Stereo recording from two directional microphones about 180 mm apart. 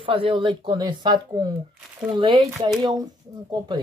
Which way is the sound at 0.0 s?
30° right (ahead or behind).